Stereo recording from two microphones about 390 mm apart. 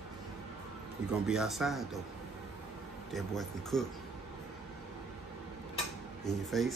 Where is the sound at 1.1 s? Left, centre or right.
Centre.